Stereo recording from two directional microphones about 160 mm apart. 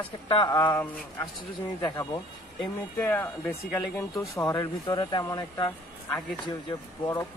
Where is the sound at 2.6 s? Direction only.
10° left (ahead or behind).